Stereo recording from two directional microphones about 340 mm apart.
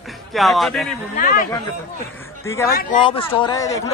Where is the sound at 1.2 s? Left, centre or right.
Left.